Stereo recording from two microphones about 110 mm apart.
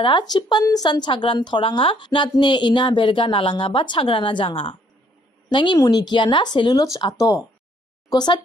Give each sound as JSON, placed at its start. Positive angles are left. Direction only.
{"t": 0.0, "sound": "a woman's voice", "side_deg": 45}